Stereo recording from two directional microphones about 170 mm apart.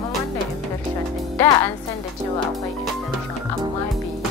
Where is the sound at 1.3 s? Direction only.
20° left (ahead or behind).